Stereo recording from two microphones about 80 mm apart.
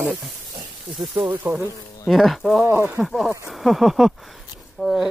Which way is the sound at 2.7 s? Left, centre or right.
Right.